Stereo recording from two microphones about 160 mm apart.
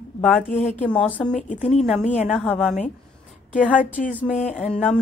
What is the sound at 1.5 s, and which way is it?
Speech, 45° left (ahead or behind).